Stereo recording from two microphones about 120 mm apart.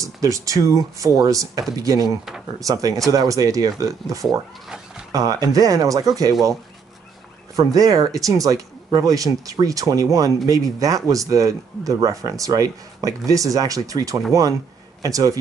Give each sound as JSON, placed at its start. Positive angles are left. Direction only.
{"t": 0.0, "sound": "speech", "side_deg": -30}
{"t": 2.0, "sound": "speech", "side_deg": 0}
{"t": 2.6, "sound": "speech", "side_deg": -30}
{"t": 4.6, "sound": "cat", "side_deg": -5}
{"t": 5.1, "sound": "speech", "side_deg": -30}
{"t": 7.5, "sound": "speech", "side_deg": -30}